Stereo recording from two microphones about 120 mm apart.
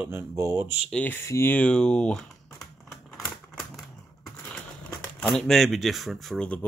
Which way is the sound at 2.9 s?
Centre (ahead or behind).